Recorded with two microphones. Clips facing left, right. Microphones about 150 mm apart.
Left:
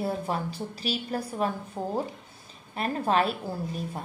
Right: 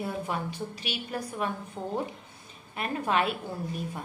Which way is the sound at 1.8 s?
10° left (ahead or behind).